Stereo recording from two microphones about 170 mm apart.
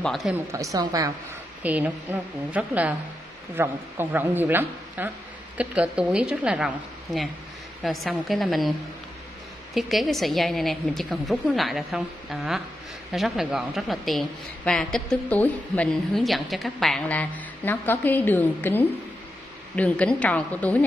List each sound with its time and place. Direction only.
0.0 s a woman's voice: centre (ahead or behind)
0.5 s a woman's voice: 20° right (ahead or behind)
1.6 s a woman's voice: 10° right (ahead or behind)
7.8 s a woman's voice: centre (ahead or behind)
9.8 s a woman's voice: centre (ahead or behind)